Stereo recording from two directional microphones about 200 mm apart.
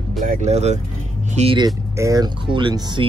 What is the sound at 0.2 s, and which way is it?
Speech, 40° right (ahead or behind).